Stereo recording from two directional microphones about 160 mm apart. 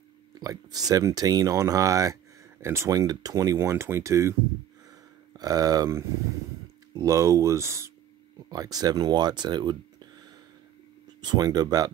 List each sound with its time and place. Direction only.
0.3 s speech: 25° right (ahead or behind)
5.4 s speech: 20° right (ahead or behind)